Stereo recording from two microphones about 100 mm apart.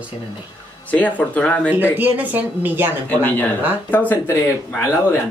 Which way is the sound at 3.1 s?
15° left (ahead or behind).